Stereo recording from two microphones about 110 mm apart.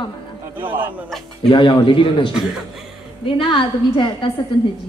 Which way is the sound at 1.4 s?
50° left (ahead or behind).